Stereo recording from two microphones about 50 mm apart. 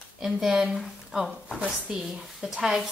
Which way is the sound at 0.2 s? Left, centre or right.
Centre.